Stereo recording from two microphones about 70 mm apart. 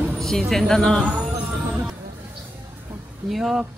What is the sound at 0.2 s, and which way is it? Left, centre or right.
Speech, centre.